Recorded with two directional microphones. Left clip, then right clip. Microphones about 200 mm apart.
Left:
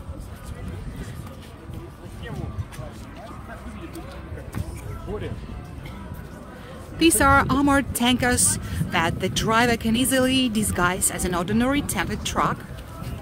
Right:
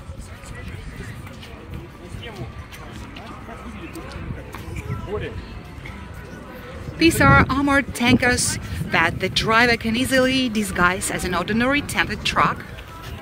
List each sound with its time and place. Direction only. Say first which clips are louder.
7.0 s speech: right 2 dB; 10° left (ahead or behind)